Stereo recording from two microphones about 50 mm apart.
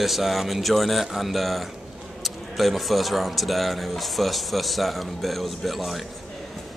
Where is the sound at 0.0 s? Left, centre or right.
Centre.